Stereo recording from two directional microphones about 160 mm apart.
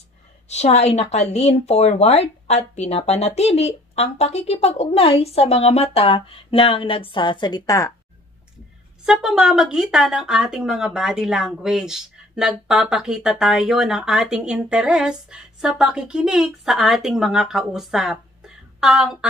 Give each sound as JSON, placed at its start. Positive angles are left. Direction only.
{"t": 0.5, "sound": "speech", "side_deg": 45}
{"t": 9.0, "sound": "speech", "side_deg": -5}